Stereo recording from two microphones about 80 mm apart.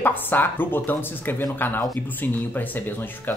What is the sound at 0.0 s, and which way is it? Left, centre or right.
Speech, left.